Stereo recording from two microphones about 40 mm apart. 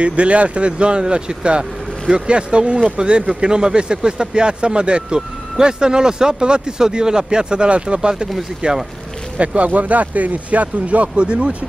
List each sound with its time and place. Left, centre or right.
0.0 s speech: right